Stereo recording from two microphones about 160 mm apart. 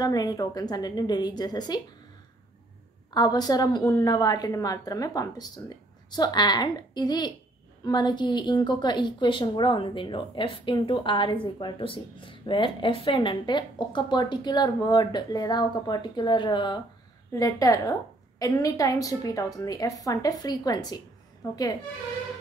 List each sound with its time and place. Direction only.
0.0 s a woman's voice: 25° left (ahead or behind)
3.1 s a woman's voice: 25° left (ahead or behind)